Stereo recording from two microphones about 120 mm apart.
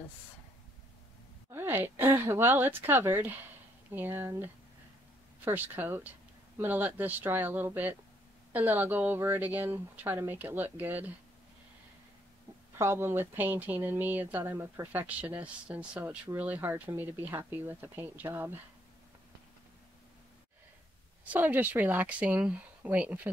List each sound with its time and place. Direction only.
1.5 s speech: 20° right (ahead or behind)
12.7 s speech: 20° right (ahead or behind)
21.3 s speech: 15° right (ahead or behind)